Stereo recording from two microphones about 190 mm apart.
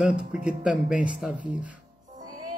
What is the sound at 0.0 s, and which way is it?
Speech, 5° right (ahead or behind).